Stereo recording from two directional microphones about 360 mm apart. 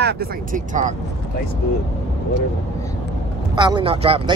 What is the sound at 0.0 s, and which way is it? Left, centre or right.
Speech, right.